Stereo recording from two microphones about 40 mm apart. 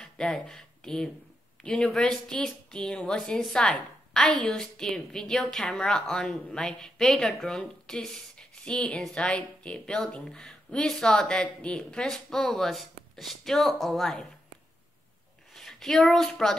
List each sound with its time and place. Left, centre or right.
0.3 s speech: centre
1.9 s a woman's voice: centre
2.2 s a woman's voice: centre
4.1 s a woman's voice: centre
9.2 s speech: left
12.3 s a woman's voice: centre
15.5 s a sound: centre
16.3 s a woman's voice: centre